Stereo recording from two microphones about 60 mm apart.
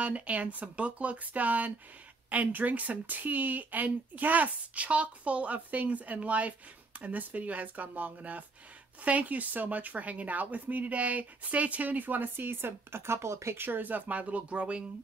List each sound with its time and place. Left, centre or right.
0.0 s a woman's voice: right
13.6 s a woman's voice: right